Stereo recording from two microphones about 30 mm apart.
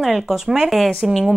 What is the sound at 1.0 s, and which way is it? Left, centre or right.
Speech, centre.